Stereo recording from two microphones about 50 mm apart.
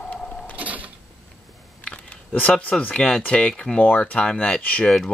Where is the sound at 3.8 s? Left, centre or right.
Left.